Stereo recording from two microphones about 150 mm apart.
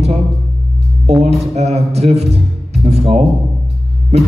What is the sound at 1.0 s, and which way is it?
A man's voice, 45° right (ahead or behind).